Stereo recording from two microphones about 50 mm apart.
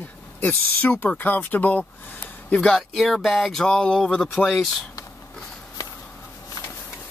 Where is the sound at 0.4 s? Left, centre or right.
Left.